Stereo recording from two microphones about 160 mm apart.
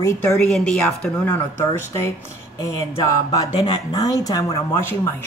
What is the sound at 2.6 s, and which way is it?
Speech, 20° left (ahead or behind).